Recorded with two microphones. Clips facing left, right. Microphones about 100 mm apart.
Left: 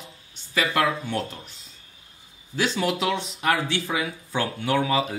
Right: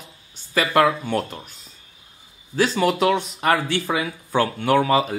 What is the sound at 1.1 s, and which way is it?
Speech, 50° right (ahead or behind).